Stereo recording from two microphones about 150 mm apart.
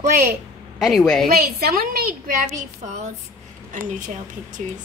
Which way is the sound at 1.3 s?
80° right.